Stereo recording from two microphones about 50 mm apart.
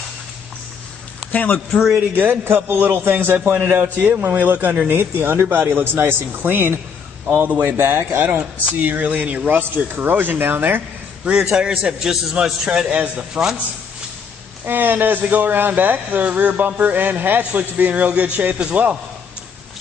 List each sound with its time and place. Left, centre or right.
1.3 s speech: left
2.4 s a man's voice: right
3.4 s speech: right
9.6 s speech: right
11.4 s a man's voice: centre
14.6 s a man's voice: right